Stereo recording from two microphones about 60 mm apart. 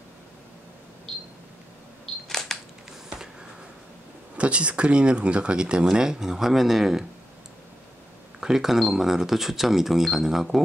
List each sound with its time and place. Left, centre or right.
2.2 s camera: centre
4.4 s speech: centre
8.4 s speech: centre